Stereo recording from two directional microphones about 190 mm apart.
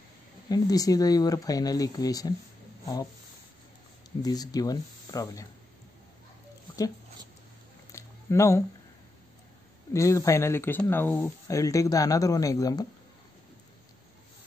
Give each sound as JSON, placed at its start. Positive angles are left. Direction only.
{"t": 0.5, "sound": "speech", "side_deg": 20}
{"t": 4.2, "sound": "speech", "side_deg": 20}
{"t": 7.9, "sound": "a sound", "side_deg": 15}
{"t": 9.9, "sound": "speech", "side_deg": 15}